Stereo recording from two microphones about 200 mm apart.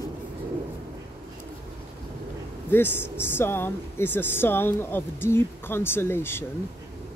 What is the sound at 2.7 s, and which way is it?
Speech, 10° left (ahead or behind).